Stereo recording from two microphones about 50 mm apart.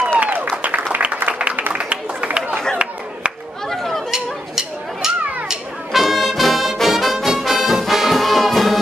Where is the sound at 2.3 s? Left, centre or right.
Right.